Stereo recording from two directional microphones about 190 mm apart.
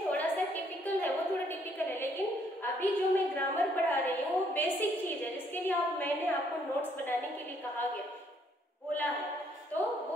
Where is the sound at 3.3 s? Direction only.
10° left (ahead or behind).